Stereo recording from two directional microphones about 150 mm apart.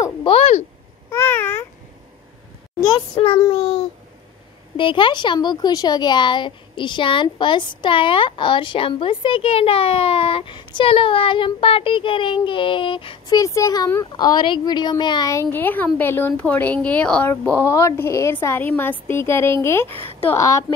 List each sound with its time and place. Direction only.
0.3 s a sound: 45° left (ahead or behind)
1.1 s babbling: 15° left (ahead or behind)
3.2 s child singing: 40° left (ahead or behind)
4.7 s speech: 35° left (ahead or behind)
13.4 s a woman's voice: 25° left (ahead or behind)
20.1 s a sound: 40° left (ahead or behind)
20.3 s speech: 20° left (ahead or behind)